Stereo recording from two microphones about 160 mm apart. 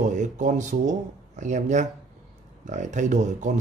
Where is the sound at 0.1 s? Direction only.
50° right (ahead or behind).